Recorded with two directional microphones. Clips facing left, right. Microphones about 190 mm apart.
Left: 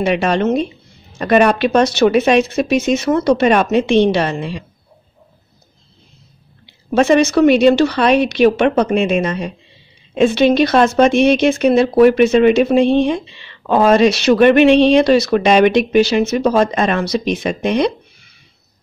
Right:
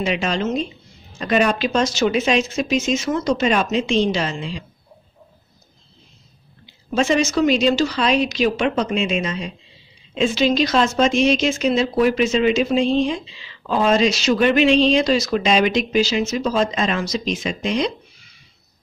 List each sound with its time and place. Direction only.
0.0 s speech: 60° left (ahead or behind)
6.9 s speech: 60° left (ahead or behind)